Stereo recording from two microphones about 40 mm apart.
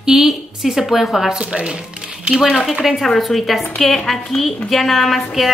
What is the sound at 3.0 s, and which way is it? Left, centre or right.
A woman's voice, centre.